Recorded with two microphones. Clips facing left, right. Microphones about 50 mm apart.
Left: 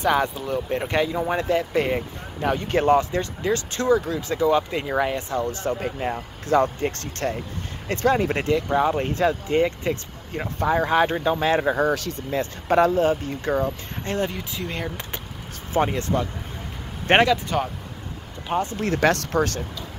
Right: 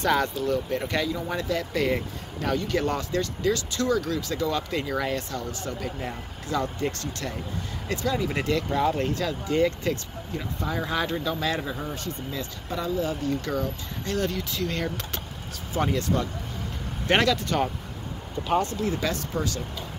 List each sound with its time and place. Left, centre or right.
0.0 s speech: centre
5.4 s speech: left
8.4 s speech: left
10.3 s speech: left
11.7 s speech: left
12.3 s speech: left
13.0 s speech: left; by 15.0 s centre
15.7 s speech: left
17.2 s speech: centre
18.8 s speech: left